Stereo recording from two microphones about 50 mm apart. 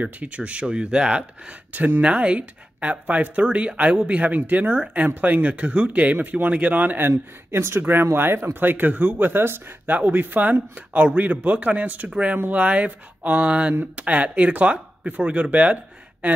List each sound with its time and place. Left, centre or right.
0.0 s speech: right
1.7 s speech: right
2.0 s speech: right
6.1 s speech: right
7.1 s speech: right
9.9 s speech: right